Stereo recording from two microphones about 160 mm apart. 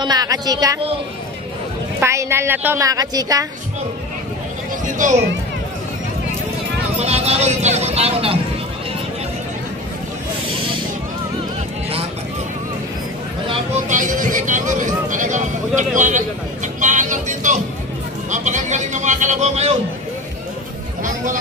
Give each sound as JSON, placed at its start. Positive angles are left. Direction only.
{"t": 0.0, "sound": "speech", "side_deg": -25}
{"t": 2.0, "sound": "a woman's voice", "side_deg": -15}
{"t": 4.8, "sound": "a sound", "side_deg": -55}
{"t": 7.0, "sound": "speech", "side_deg": -40}
{"t": 13.8, "sound": "speech", "side_deg": -55}